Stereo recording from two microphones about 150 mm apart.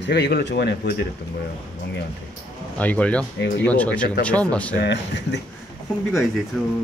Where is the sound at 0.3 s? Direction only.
90° left.